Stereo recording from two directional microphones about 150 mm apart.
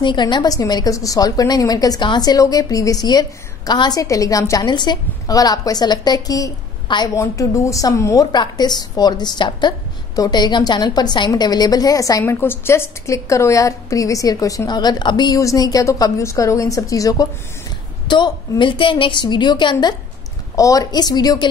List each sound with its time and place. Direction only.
0.0 s a woman's voice: 30° left (ahead or behind)